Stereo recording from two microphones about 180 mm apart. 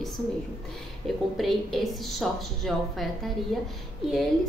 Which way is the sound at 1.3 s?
Centre (ahead or behind).